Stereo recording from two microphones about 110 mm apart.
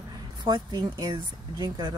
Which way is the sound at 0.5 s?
35° right (ahead or behind).